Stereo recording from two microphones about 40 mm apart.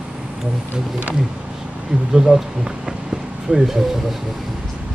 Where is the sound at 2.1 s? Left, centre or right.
Centre.